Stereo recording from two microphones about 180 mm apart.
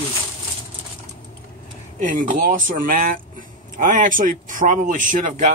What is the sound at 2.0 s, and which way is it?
Speech, 50° right (ahead or behind).